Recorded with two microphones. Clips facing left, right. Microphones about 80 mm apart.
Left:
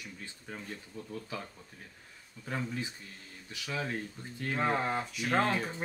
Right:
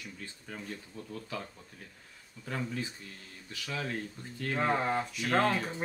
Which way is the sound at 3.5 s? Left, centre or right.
Centre.